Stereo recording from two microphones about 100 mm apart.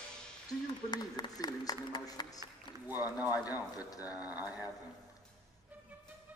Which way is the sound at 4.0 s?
15° right (ahead or behind).